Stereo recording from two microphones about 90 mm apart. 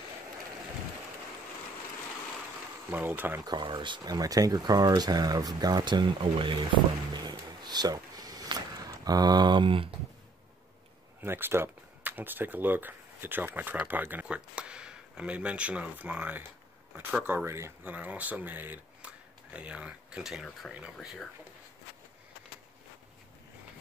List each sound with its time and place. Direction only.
2.9 s speech: 20° right (ahead or behind)
3.4 s speech: 60° right (ahead or behind)
4.0 s speech: 45° right (ahead or behind)
6.3 s speech: 70° right (ahead or behind)
7.2 s a sound: 50° right (ahead or behind); by 9.8 s 65° right (ahead or behind)
11.1 s speech: 25° right (ahead or behind)
17.9 s speech: 20° right (ahead or behind)